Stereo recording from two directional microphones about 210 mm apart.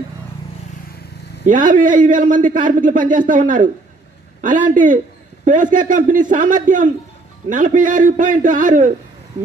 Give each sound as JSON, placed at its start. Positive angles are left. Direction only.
{"t": 1.4, "sound": "a man's voice", "side_deg": -40}